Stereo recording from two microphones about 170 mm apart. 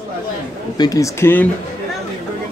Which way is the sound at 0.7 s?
20° left (ahead or behind).